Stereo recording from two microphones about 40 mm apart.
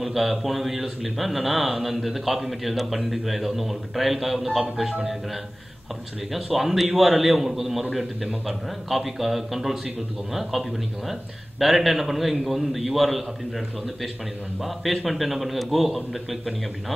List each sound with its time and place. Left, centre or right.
0.0 s a man's voice: centre
6.3 s a man's voice: centre
14.6 s a man's voice: centre